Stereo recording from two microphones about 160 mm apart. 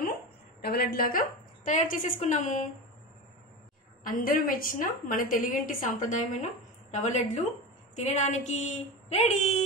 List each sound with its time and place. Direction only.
0.6 s a woman's voice: 80° left; by 2.6 s 50° left (ahead or behind)
4.0 s a woman's voice: 60° left (ahead or behind); by 9.4 s 40° left (ahead or behind)